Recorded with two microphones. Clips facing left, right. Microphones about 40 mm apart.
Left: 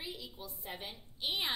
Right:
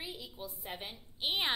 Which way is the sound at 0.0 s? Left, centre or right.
Centre.